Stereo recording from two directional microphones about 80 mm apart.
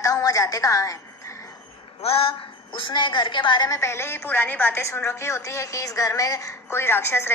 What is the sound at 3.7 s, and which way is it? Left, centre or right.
A woman's voice, left.